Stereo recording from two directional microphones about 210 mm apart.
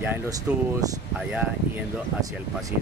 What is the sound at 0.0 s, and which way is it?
Speech, 10° right (ahead or behind).